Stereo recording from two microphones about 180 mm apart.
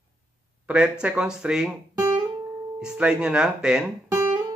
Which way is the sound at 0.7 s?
5° right (ahead or behind).